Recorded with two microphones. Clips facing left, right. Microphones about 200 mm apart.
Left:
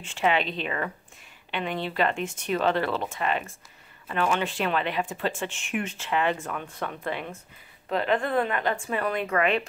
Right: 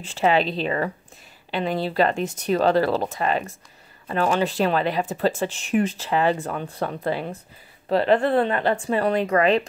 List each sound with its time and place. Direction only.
0.0 s speech: 35° right (ahead or behind)